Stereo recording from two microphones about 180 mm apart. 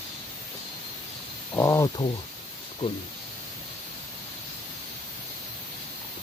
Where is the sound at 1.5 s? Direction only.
15° left (ahead or behind).